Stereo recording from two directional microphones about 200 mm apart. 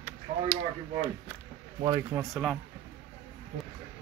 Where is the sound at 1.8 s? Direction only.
20° right (ahead or behind).